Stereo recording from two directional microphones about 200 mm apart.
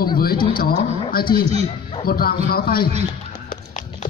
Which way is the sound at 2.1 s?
50° left (ahead or behind).